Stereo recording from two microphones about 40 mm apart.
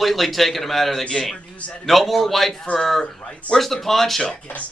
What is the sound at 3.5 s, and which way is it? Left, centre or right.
Speech, centre.